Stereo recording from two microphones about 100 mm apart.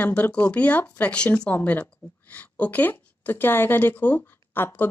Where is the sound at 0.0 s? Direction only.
15° left (ahead or behind).